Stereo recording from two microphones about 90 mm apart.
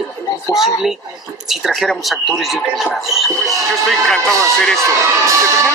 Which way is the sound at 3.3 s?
35° right (ahead or behind).